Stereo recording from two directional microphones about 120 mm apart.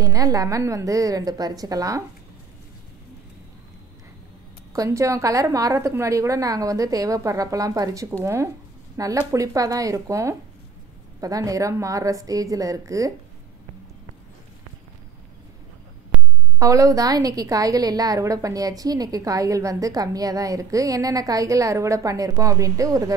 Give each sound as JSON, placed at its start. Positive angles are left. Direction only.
{"t": 0.0, "sound": "a woman's voice", "side_deg": -30}
{"t": 4.7, "sound": "a woman's voice", "side_deg": -25}
{"t": 16.1, "sound": "a sound", "side_deg": -10}
{"t": 16.5, "sound": "a woman's voice", "side_deg": -25}